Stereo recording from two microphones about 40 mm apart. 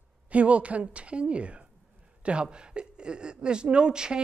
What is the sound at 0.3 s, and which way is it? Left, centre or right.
A woman's voice, right.